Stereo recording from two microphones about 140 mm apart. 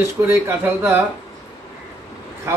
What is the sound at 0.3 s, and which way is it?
Speech, 15° right (ahead or behind).